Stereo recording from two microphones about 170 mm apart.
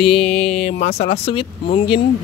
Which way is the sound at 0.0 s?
35° left (ahead or behind).